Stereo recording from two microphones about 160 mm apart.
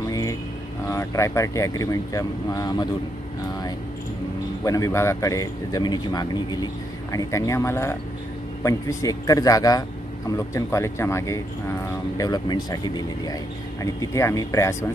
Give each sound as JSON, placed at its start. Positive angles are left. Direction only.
{"t": 0.1, "sound": "vehicle", "side_deg": 20}
{"t": 0.8, "sound": "a man's voice", "side_deg": 20}
{"t": 4.6, "sound": "a man's voice", "side_deg": 20}